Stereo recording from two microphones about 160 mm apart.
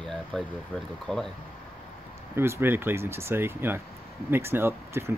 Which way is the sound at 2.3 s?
15° right (ahead or behind).